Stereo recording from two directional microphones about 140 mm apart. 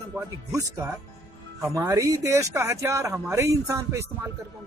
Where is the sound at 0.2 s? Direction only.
15° right (ahead or behind).